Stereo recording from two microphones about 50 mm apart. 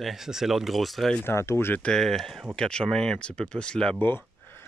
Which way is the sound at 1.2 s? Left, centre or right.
Left.